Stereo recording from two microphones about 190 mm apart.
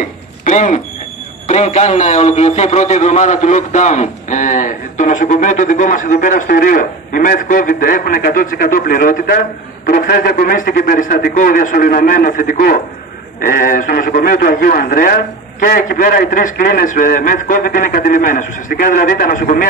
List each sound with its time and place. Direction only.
0.5 s a man's voice: 40° left (ahead or behind)